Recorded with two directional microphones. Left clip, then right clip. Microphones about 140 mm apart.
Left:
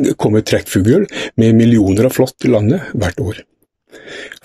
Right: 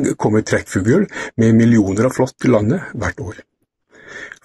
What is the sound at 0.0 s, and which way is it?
Speech, centre (ahead or behind).